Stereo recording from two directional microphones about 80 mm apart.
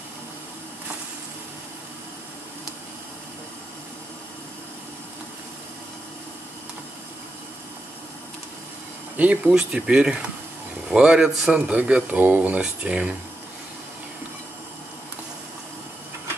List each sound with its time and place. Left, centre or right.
9.1 s a man's voice: centre